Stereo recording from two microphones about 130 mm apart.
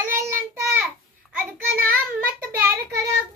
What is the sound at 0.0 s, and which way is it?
Child singing, 20° right (ahead or behind).